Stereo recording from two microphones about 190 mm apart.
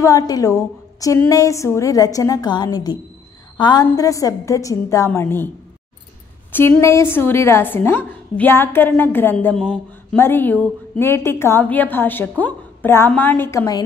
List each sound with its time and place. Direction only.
0.0 s a woman's voice: 20° left (ahead or behind)
6.5 s a woman's voice: 10° left (ahead or behind)